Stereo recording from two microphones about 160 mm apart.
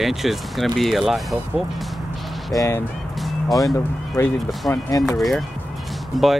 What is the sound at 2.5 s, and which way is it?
Speech, 15° left (ahead or behind).